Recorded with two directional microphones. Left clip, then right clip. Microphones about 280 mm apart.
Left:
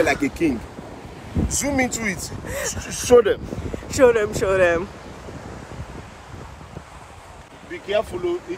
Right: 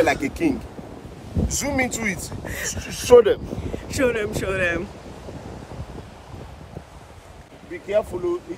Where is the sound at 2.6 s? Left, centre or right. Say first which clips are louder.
Left 1 dB; right.